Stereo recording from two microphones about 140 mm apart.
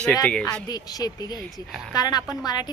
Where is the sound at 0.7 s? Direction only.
30° left (ahead or behind).